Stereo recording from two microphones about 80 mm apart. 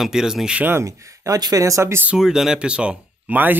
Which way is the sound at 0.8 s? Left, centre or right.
Right.